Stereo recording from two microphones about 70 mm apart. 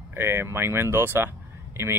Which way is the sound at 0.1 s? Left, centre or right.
Right.